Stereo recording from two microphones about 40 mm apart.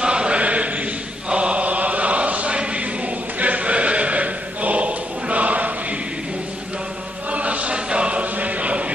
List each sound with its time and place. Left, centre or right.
0.0 s chant: right
3.3 s horse: right
7.2 s chant: right